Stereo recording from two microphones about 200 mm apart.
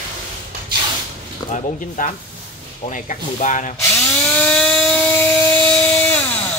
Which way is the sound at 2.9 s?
40° left (ahead or behind).